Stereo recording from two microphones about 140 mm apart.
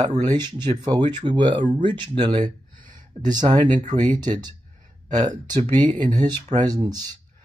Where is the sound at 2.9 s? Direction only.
30° right (ahead or behind).